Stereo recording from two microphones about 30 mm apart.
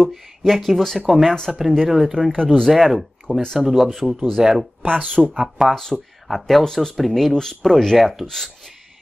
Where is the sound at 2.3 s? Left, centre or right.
Left.